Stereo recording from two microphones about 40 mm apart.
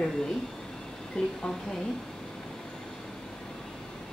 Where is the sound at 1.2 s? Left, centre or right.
Left.